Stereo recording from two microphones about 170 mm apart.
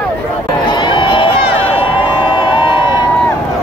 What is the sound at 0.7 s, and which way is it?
Crowd, 25° left (ahead or behind).